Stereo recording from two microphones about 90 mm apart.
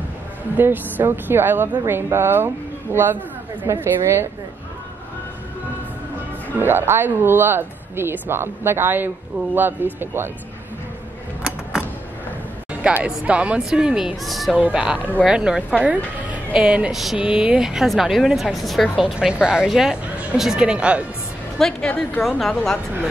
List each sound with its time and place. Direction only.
0.6 s speech: 20° right (ahead or behind)
6.6 s speech: 25° right (ahead or behind)
12.8 s a woman's voice: 10° right (ahead or behind)
14.6 s speech: 10° right (ahead or behind)
16.3 s music: 15° right (ahead or behind)
16.9 s a woman's voice: centre (ahead or behind)
21.5 s a woman's voice: 10° left (ahead or behind)